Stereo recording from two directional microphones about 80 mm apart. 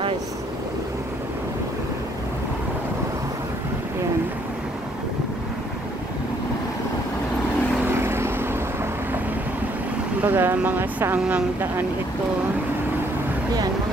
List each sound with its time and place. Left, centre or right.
7.8 s vehicle: right
10.2 s speech: right